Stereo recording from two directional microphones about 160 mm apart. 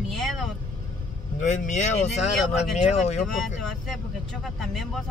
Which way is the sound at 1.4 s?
50° left (ahead or behind).